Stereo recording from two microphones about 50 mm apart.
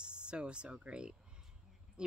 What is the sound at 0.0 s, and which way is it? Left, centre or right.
Speech, centre.